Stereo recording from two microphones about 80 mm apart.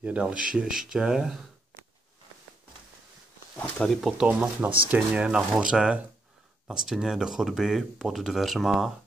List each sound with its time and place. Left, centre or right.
0.0 s speech: centre
3.8 s speech: centre
4.3 s speech: right; by 8.9 s centre